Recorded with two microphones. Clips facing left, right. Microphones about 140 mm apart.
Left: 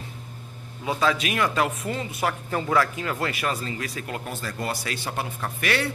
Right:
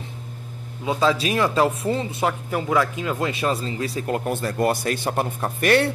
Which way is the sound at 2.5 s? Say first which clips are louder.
Left 1 dB; 15° right (ahead or behind).